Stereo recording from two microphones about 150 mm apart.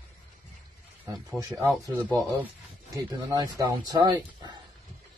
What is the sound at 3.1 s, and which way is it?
Speech, 25° right (ahead or behind).